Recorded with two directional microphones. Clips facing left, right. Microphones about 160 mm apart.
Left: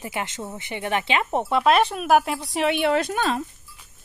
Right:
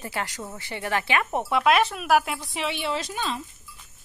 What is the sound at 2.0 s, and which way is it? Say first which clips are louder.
Speech: left 3 dB; centre (ahead or behind).